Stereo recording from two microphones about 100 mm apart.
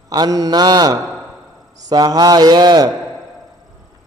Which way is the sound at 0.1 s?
40° right (ahead or behind).